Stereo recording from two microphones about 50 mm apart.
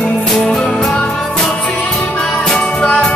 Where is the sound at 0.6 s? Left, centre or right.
Centre.